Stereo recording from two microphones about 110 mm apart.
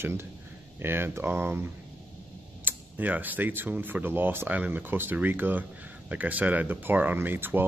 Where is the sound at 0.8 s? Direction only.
20° right (ahead or behind).